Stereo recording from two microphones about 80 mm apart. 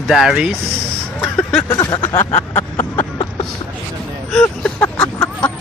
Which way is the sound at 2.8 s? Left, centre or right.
Left.